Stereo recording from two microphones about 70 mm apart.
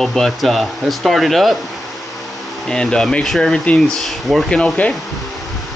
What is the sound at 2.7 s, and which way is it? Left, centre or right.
Speech, centre.